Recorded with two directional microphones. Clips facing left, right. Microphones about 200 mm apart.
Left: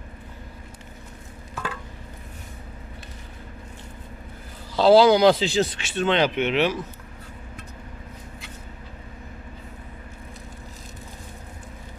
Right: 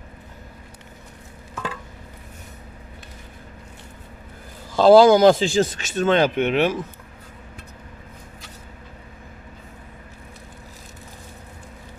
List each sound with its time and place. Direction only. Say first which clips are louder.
4.7 s speech: right 3 dB; 50° right (ahead or behind)